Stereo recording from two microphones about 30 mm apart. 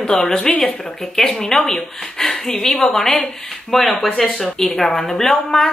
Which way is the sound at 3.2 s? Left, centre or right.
Centre.